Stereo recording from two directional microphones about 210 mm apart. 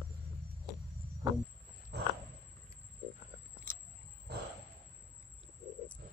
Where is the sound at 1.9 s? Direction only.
50° right (ahead or behind).